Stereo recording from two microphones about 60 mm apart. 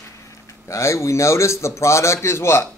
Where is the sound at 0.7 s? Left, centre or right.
Left.